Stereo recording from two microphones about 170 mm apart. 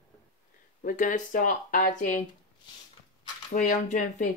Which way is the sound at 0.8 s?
50° left (ahead or behind).